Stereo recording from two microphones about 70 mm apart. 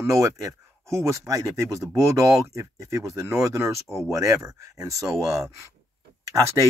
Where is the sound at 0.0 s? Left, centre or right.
Right.